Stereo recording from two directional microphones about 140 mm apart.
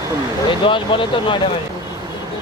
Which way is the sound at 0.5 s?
35° left (ahead or behind).